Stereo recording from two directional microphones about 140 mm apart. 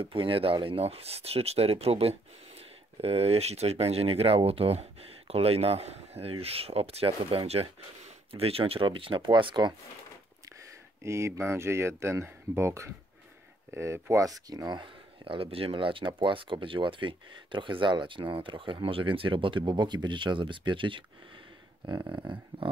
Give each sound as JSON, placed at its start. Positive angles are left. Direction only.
{"t": 0.0, "sound": "speech", "side_deg": -40}
{"t": 11.0, "sound": "speech", "side_deg": -20}